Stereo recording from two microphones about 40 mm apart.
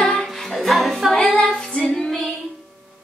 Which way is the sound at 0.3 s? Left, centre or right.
Centre.